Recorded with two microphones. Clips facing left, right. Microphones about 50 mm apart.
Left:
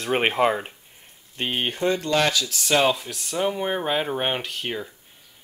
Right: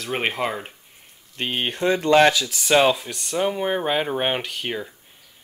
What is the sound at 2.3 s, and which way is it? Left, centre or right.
Speech, centre.